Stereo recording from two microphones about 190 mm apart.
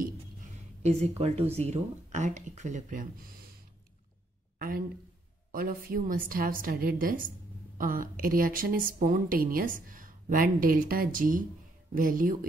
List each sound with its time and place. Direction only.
0.8 s speech: 35° right (ahead or behind)
4.6 s a woman's voice: 50° right (ahead or behind)